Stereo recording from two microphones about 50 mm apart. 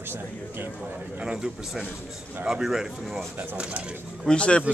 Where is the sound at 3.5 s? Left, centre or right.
Right.